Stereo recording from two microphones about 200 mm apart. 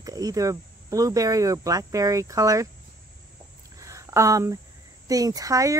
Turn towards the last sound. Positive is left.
turn(degrees=-15)  # may be behind; listen again after turning